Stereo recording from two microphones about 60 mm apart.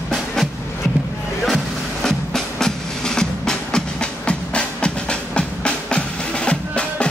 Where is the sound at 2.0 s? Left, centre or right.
Centre.